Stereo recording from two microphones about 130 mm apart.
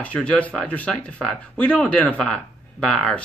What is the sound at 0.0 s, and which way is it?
Speech, 10° left (ahead or behind).